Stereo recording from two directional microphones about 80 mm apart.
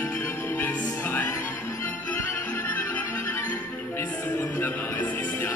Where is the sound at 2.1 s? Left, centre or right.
Left.